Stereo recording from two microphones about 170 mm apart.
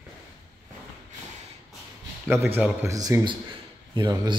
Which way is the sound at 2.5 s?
15° right (ahead or behind).